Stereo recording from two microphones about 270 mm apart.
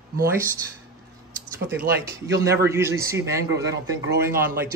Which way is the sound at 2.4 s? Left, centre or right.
Centre.